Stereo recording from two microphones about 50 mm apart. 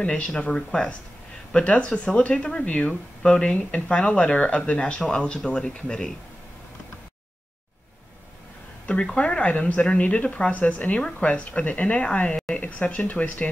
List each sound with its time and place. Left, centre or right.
0.0 s speech: left
9.1 s speech: left